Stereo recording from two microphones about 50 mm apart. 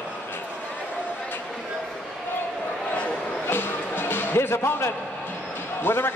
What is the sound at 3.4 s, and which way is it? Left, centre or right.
Music, left.